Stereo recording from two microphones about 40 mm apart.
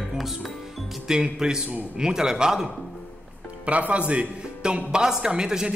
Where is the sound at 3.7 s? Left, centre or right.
Right.